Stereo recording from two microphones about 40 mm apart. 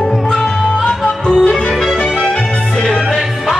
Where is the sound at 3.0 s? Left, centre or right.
Centre.